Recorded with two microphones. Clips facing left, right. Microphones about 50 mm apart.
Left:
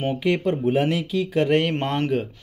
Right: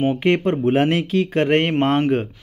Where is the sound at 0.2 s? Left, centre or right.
Right.